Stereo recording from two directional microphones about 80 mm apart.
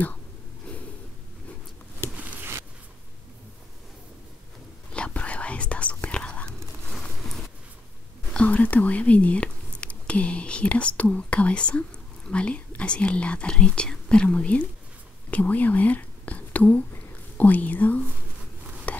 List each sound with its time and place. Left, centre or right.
4.9 s whispering: centre
8.3 s speech: centre
18.9 s stir: centre